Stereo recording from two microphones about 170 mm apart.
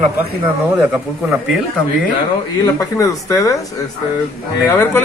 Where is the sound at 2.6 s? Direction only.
20° left (ahead or behind).